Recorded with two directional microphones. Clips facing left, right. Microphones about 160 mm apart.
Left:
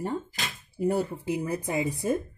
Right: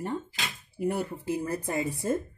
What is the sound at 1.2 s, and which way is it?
Speech, 15° left (ahead or behind).